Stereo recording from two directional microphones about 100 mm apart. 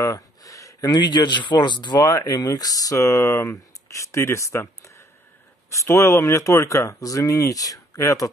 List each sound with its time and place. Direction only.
0.0 s speech: 35° left (ahead or behind)